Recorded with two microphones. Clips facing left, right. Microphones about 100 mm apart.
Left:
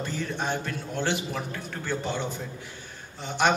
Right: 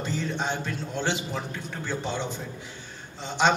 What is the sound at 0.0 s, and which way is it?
A man's voice, 20° right (ahead or behind).